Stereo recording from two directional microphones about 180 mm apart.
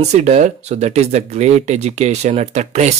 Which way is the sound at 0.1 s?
40° right (ahead or behind).